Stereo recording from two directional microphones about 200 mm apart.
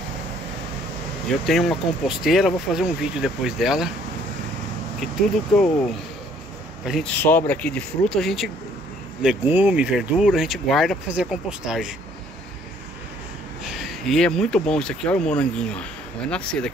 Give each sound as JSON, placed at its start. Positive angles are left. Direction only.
{"t": 1.4, "sound": "speech", "side_deg": 0}
{"t": 5.0, "sound": "speech", "side_deg": 5}
{"t": 6.9, "sound": "speech", "side_deg": 5}
{"t": 13.7, "sound": "speech", "side_deg": 0}